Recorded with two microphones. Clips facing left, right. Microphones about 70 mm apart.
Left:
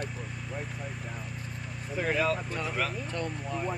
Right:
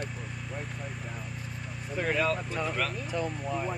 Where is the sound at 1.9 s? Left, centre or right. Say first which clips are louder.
Even; centre.